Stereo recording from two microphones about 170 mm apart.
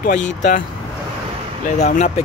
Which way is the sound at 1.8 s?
45° left (ahead or behind).